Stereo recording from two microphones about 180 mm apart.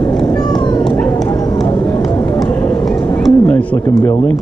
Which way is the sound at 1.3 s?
20° left (ahead or behind).